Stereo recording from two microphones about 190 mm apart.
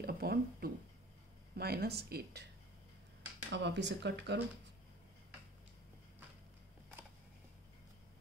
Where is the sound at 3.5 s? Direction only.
65° right (ahead or behind).